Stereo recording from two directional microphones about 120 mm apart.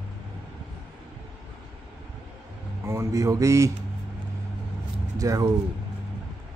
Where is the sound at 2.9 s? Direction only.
25° right (ahead or behind).